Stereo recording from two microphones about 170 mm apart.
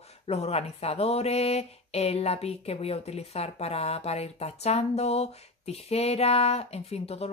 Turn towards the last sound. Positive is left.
turn(degrees=40)  # may be behind; listen again after turning